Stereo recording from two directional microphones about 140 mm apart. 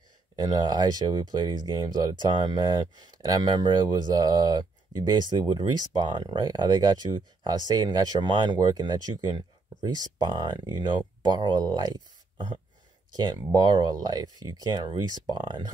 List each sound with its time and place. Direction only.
0.4 s speech: 30° right (ahead or behind)
13.1 s speech: 30° right (ahead or behind)